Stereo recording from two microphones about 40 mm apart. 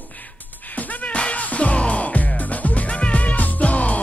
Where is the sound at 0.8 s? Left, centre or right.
Left.